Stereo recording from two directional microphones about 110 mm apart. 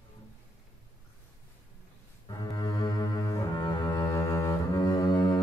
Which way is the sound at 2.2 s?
40° left (ahead or behind).